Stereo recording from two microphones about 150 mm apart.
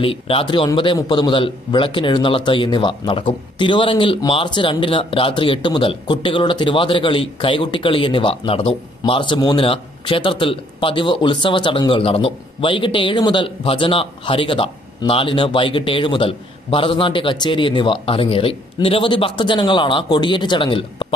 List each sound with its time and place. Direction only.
0.0 s speech: 35° left (ahead or behind)